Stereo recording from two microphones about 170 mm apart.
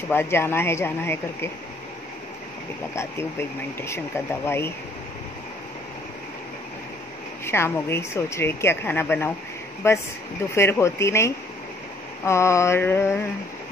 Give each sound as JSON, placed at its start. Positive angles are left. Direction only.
{"t": 0.1, "sound": "speech", "side_deg": 15}
{"t": 2.9, "sound": "speech", "side_deg": 15}
{"t": 7.4, "sound": "speech", "side_deg": 15}